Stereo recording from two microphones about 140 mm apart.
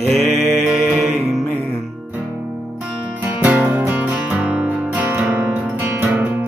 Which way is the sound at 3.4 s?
10° right (ahead or behind).